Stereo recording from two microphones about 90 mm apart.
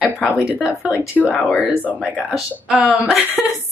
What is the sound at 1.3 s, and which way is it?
Speech, 15° left (ahead or behind).